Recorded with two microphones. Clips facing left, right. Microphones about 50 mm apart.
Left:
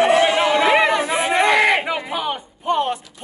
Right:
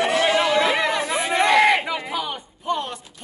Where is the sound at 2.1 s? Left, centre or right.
Left.